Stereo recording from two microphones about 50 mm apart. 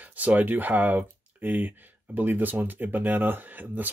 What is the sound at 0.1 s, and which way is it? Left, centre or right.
Speech, right.